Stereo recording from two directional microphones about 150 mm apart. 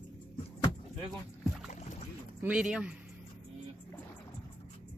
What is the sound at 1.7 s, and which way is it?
Boat, 55° left (ahead or behind).